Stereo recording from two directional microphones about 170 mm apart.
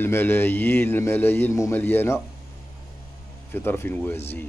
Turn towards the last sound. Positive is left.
turn(degrees=15)  # may be behind; listen again after turning